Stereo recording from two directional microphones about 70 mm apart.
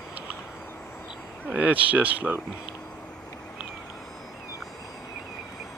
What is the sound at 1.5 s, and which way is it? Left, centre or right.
Speech, right.